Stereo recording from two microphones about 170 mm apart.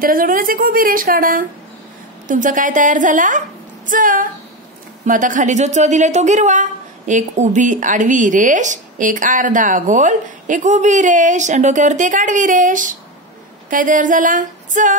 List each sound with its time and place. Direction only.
0.0 s a woman's voice: 55° right (ahead or behind)